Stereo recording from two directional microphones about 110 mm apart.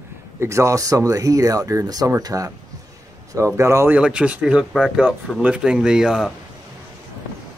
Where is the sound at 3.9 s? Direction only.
10° right (ahead or behind).